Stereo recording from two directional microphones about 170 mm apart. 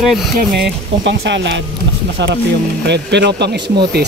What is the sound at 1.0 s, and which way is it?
Speech, 90° right.